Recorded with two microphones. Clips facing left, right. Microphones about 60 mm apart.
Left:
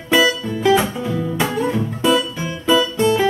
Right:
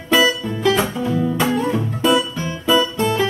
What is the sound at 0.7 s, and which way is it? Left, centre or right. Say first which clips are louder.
Music: left 2 dB; centre.